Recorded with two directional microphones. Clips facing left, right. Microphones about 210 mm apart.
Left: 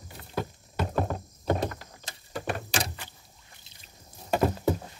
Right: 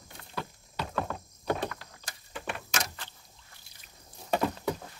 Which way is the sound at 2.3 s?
35° left (ahead or behind).